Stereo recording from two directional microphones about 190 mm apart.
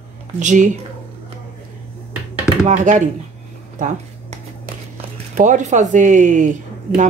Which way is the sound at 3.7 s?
40° right (ahead or behind).